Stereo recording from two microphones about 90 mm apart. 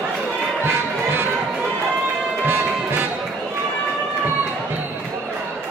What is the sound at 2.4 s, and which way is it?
Music, 25° right (ahead or behind).